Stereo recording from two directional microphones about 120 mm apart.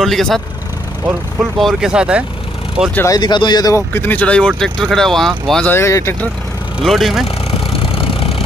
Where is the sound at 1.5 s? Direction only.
5° right (ahead or behind).